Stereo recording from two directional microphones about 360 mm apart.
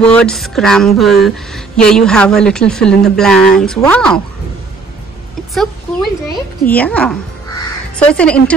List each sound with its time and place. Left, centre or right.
0.0 s speech: centre
6.3 s speech: centre